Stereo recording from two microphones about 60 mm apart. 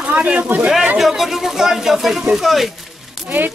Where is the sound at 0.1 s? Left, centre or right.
Right.